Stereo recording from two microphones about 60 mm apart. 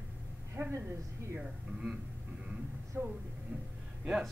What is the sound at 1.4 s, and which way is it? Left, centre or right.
Speech, centre.